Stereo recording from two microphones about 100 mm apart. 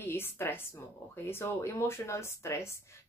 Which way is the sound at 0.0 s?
25° left (ahead or behind).